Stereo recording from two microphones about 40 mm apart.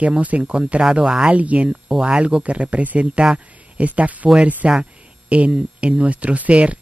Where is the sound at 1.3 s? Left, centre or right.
Right.